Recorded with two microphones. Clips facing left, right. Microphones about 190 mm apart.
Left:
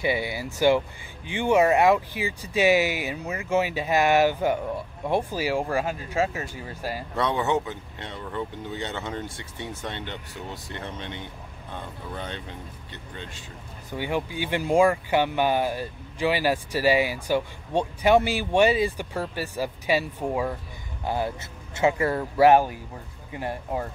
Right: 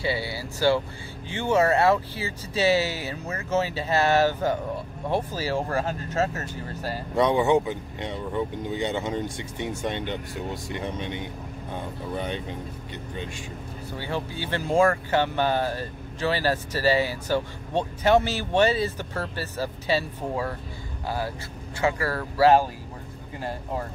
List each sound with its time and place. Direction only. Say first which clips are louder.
0.0 s speech: left 2 dB; 15° left (ahead or behind)
7.2 s speech: right 5 dB; 15° right (ahead or behind)
13.9 s speech: left 4 dB; 15° left (ahead or behind)